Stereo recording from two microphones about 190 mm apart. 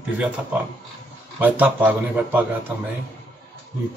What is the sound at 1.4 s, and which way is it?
A man's voice, 10° right (ahead or behind).